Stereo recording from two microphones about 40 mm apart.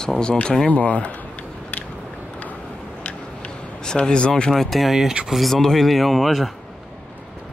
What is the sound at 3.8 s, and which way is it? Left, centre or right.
Speech, left.